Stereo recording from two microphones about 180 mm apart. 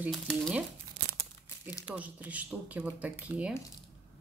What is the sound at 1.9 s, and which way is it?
Speech, 10° right (ahead or behind).